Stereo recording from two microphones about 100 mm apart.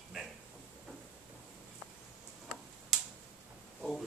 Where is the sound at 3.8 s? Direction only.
Centre (ahead or behind).